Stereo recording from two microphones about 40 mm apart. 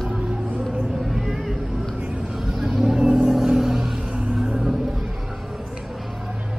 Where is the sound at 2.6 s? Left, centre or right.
Centre.